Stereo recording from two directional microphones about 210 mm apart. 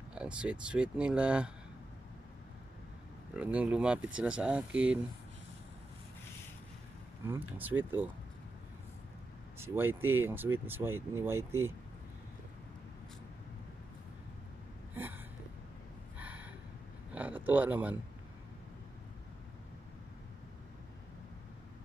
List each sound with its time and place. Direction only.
0.1 s speech: 5° right (ahead or behind)
3.3 s speech: 5° right (ahead or behind)
7.2 s speech: 10° right (ahead or behind)
9.6 s speech: 10° right (ahead or behind)
15.0 s a sound: 10° right (ahead or behind)
16.2 s gasp: 5° right (ahead or behind)
17.1 s a sound: 10° right (ahead or behind)